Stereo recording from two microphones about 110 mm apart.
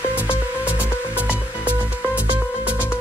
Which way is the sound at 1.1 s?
15° right (ahead or behind).